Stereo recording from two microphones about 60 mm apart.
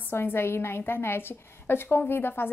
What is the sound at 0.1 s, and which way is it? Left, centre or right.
A woman's voice, left.